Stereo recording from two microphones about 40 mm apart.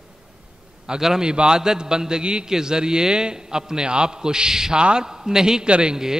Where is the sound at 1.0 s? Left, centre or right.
Centre.